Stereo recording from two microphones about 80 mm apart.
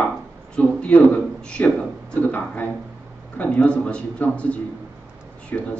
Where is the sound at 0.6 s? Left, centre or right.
Centre.